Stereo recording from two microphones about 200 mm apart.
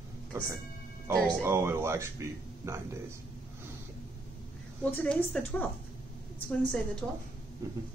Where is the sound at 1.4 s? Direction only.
10° right (ahead or behind).